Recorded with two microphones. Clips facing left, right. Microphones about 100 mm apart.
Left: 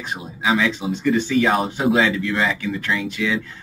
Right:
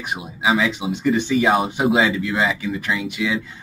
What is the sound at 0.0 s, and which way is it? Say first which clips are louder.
Speech: right 2 dB; 15° right (ahead or behind).